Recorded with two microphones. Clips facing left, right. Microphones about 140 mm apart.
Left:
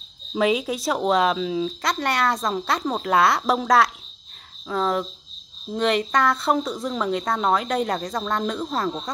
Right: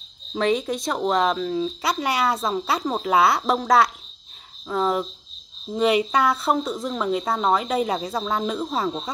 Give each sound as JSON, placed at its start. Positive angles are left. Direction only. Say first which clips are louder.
{"t": 0.3, "sound": "speech", "louder": "left 1 dB", "side_deg": 5}